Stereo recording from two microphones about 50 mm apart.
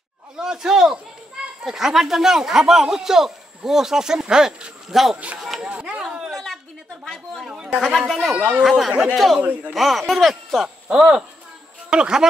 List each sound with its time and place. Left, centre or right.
0.4 s a man's voice: centre
5.1 s a man's voice: right
5.6 s a sound: right
6.3 s a sound: centre
7.4 s chatter: centre
8.1 s speech: centre
9.4 s a man's voice: right
9.8 s speech: centre
10.9 s a man's voice: centre